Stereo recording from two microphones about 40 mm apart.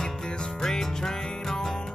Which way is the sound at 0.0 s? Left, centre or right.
Centre.